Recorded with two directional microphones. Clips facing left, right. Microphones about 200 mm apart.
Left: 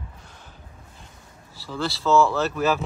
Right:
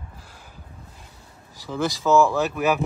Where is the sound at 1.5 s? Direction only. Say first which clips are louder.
Right 3 dB; 15° right (ahead or behind).